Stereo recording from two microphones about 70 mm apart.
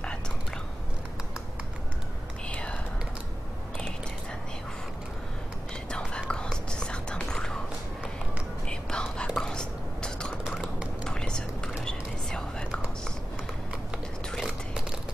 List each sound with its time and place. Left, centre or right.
2.4 s whispering: centre
5.9 s whispering: centre
8.6 s whispering: centre